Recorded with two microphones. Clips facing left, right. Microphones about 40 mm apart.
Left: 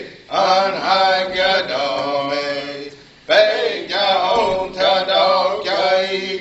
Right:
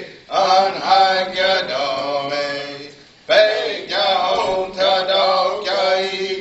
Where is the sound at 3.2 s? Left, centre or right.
Centre.